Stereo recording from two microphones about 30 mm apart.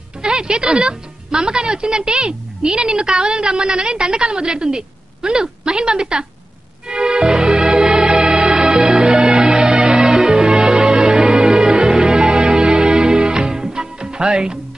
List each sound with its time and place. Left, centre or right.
0.2 s music: right
0.7 s a woman's voice: right
6.9 s music: right
8.8 s music: right
9.2 s music: right